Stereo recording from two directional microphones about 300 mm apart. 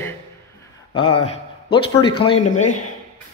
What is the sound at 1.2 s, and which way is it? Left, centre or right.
A man's voice, centre.